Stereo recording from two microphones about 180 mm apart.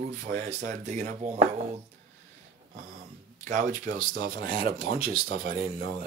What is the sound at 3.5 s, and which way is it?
Speech, 45° right (ahead or behind).